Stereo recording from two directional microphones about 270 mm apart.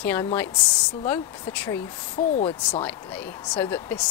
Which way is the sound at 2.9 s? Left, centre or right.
Centre.